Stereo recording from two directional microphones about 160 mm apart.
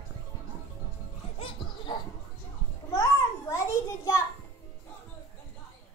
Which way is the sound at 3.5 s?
15° left (ahead or behind).